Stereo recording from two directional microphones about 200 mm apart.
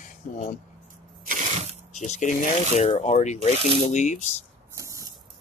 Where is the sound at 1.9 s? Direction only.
35° left (ahead or behind).